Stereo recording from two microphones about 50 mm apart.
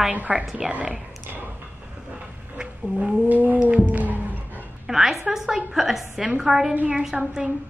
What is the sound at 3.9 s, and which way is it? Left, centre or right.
Music, right.